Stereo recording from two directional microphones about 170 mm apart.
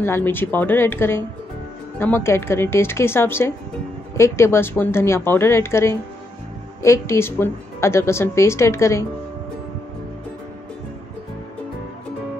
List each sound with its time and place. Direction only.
0.0 s a woman's voice: 15° left (ahead or behind)